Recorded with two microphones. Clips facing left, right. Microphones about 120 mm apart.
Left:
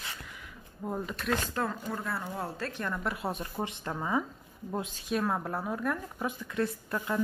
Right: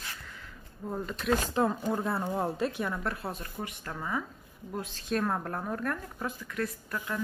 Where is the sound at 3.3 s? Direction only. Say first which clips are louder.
Left 3 dB; 25° left (ahead or behind).